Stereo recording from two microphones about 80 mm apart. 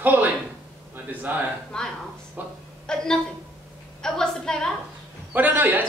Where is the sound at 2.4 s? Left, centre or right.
Right.